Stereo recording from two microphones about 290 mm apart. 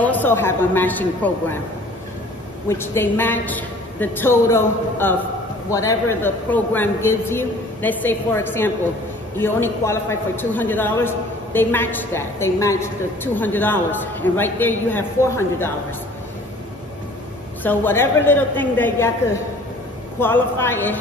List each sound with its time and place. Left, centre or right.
0.0 s a man's voice: centre
2.7 s a man's voice: centre
17.6 s a man's voice: centre
20.2 s a man's voice: centre